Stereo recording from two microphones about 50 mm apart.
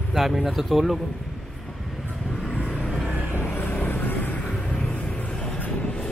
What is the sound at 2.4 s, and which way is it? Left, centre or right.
Vehicle, left.